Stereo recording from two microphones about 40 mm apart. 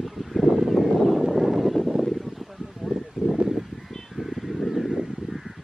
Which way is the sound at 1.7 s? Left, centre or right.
Centre.